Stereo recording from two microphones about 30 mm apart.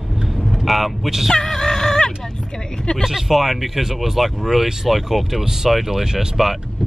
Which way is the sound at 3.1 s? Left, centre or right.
Centre.